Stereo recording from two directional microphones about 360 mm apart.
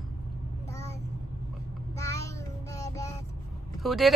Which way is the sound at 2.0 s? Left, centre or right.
Centre.